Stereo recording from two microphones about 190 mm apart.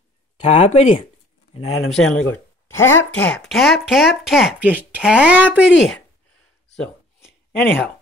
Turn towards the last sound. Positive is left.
turn(degrees=10)  # may be behind; listen again after turning